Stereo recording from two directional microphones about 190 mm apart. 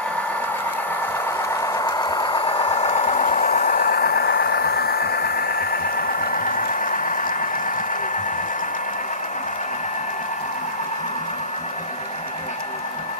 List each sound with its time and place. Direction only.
1.5 s vehicle: 15° left (ahead or behind); by 7.3 s 45° left (ahead or behind)